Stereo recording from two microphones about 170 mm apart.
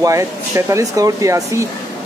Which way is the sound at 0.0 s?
20° right (ahead or behind).